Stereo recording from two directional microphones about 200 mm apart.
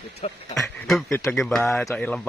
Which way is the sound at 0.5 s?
Centre (ahead or behind).